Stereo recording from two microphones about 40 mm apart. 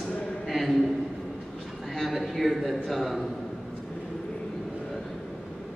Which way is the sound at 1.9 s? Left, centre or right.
Centre.